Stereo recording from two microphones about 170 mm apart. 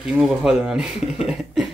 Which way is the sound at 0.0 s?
5° right (ahead or behind).